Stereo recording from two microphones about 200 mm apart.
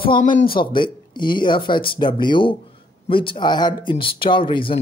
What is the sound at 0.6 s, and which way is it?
Speech, 25° left (ahead or behind).